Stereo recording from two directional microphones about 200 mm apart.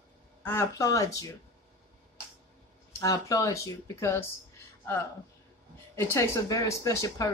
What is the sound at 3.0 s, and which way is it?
Speech, 15° left (ahead or behind).